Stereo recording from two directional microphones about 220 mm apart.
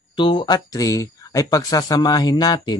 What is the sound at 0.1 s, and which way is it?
Speech, 20° left (ahead or behind).